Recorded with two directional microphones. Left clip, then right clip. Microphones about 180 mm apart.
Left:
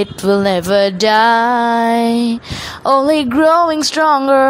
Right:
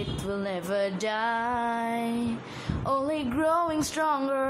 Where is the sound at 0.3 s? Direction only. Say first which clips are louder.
Left 18 dB; 50° left (ahead or behind).